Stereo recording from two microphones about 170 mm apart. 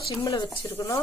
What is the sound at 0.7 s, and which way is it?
Speech, 15° left (ahead or behind).